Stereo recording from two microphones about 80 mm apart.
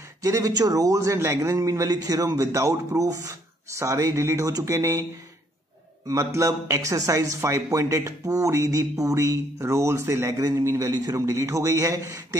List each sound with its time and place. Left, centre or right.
0.2 s speech: right
6.0 s speech: right